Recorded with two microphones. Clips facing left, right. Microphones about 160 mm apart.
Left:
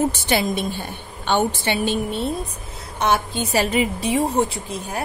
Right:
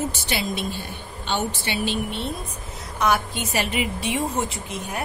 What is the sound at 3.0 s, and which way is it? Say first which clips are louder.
A woman's voice: left 2 dB; 30° left (ahead or behind).